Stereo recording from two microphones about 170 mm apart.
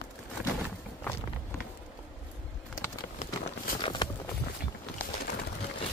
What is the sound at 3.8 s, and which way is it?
Walk, 30° left (ahead or behind).